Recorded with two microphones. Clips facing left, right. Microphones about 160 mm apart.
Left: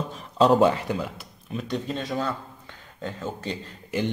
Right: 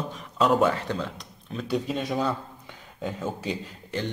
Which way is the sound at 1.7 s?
10° right (ahead or behind).